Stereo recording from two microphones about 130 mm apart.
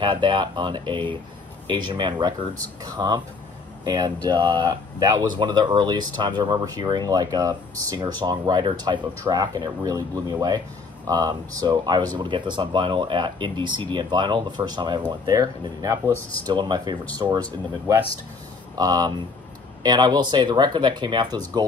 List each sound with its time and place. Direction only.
0.0 s speech: 35° right (ahead or behind)